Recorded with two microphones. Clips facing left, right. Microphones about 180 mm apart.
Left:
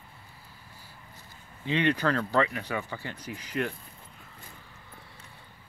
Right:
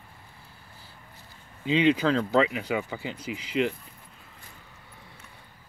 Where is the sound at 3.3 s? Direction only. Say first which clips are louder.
Right 5 dB; 90° right.